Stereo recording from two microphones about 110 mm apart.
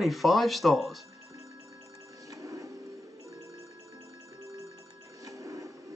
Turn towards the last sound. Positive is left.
turn(degrees=-30)  # may be behind; listen again after turning